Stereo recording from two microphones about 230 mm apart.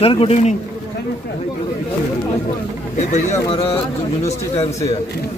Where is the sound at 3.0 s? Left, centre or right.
Left.